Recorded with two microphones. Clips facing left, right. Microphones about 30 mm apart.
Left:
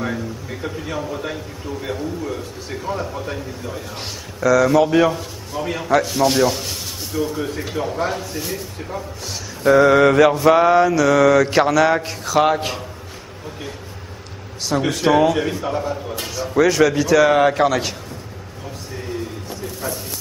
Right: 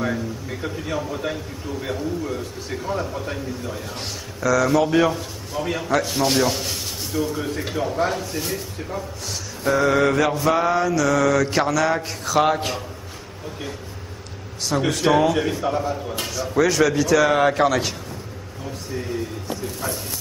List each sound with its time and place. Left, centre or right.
0.0 s a man's voice: centre
4.4 s mantra: centre
6.0 s a man's voice: centre
9.6 s mantra: centre
14.7 s a man's voice: centre
16.3 s mantra: centre
18.9 s a sound: centre